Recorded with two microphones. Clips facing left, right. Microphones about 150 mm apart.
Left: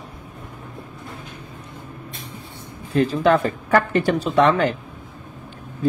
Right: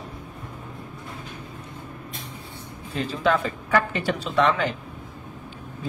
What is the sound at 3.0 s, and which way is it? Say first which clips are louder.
Speech: left 6 dB; 50° left (ahead or behind).